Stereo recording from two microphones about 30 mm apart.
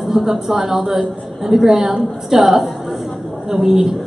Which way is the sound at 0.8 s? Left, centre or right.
Centre.